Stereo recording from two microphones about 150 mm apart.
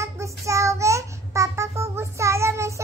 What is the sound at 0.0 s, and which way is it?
Child singing, 20° right (ahead or behind).